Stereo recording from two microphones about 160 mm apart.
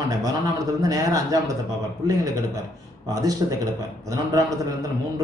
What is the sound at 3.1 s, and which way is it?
Speech, 20° right (ahead or behind).